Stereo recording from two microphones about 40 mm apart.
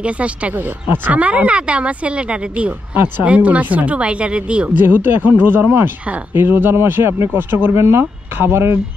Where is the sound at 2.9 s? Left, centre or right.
Right.